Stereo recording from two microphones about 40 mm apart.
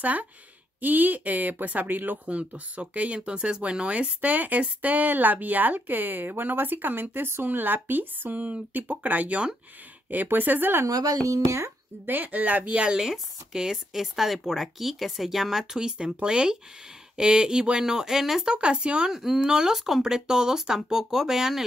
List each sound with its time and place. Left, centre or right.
0.0 s speech: right
2.2 s speech: right
3.2 s speech: right
4.2 s speech: right
7.4 s speech: right
8.7 s speech: right
12.1 s speech: right
12.9 s speech: centre
16.2 s speech: right
18.5 s speech: right
19.1 s speech: centre